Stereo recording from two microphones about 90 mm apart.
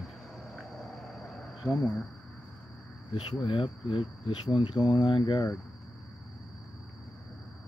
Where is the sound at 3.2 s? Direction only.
65° left (ahead or behind).